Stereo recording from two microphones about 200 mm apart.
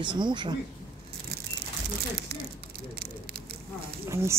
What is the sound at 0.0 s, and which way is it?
Speech, 25° right (ahead or behind).